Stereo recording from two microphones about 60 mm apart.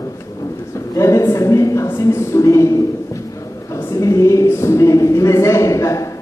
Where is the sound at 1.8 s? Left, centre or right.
Left.